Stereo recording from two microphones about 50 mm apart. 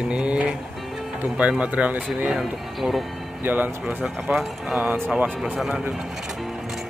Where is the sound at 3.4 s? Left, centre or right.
Right.